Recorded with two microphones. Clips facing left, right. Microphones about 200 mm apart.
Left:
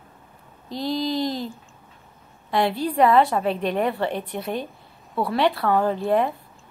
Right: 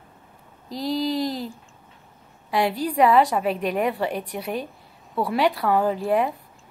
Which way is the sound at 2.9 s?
10° right (ahead or behind).